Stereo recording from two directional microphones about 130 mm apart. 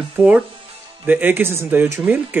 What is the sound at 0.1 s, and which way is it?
A man's voice, 10° right (ahead or behind).